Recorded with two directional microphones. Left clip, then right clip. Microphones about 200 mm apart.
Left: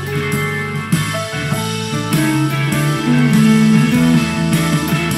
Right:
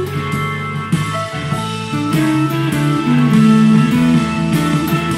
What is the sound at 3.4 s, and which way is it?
Music, 50° left (ahead or behind).